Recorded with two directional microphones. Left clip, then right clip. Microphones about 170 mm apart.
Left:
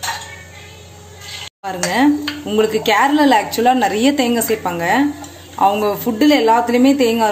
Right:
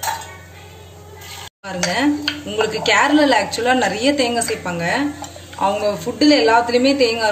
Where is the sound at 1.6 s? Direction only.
45° left (ahead or behind).